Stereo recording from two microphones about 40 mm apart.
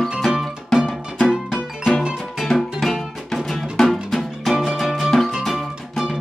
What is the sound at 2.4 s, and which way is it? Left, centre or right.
Music, centre.